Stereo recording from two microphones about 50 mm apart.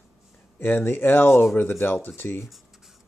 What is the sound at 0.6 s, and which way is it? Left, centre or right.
Speech, left.